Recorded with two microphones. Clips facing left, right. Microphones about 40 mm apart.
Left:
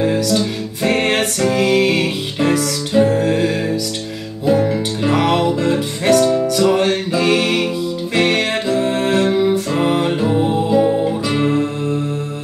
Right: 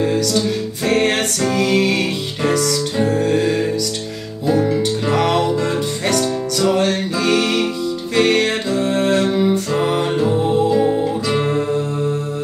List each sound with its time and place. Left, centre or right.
0.0 s music: centre